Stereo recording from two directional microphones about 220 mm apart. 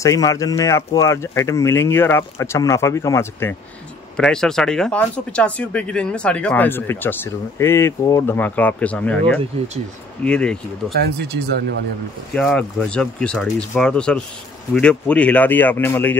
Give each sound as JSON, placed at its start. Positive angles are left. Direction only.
{"t": 0.0, "sound": "speech", "side_deg": 15}
{"t": 11.1, "sound": "speech", "side_deg": -50}
{"t": 12.4, "sound": "speech", "side_deg": 5}